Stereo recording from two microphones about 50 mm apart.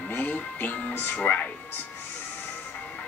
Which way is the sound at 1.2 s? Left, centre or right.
Left.